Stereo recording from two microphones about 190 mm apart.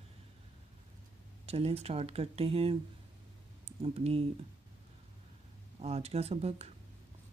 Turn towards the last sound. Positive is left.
turn(degrees=-35)  # may be behind; listen again after turning